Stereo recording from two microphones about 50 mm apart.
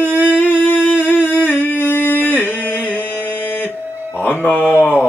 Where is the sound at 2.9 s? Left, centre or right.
Left.